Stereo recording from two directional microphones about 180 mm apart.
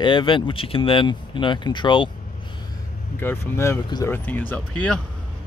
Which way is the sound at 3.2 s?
15° left (ahead or behind).